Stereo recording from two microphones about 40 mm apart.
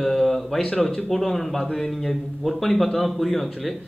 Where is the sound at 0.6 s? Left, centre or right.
Centre.